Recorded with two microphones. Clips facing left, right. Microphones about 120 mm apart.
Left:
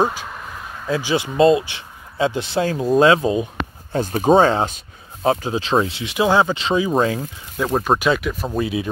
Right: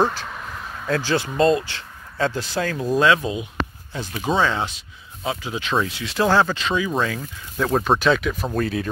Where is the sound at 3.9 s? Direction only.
45° left (ahead or behind).